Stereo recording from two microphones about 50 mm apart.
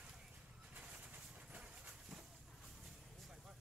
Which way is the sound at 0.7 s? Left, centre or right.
Right.